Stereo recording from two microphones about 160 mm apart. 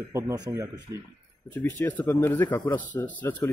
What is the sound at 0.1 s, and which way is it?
Speech, 15° right (ahead or behind).